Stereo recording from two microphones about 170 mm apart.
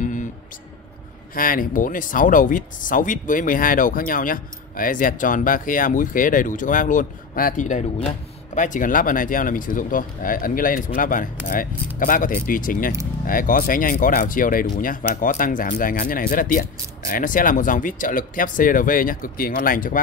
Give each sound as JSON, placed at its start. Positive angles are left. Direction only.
{"t": 0.0, "sound": "music", "side_deg": 50}
{"t": 1.3, "sound": "speech", "side_deg": 55}